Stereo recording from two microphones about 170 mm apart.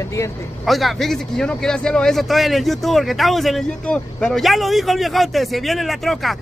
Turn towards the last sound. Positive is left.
turn(degrees=0)  # may be behind; listen again after turning